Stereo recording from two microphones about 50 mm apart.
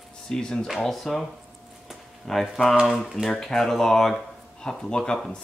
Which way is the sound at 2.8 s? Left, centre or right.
Centre.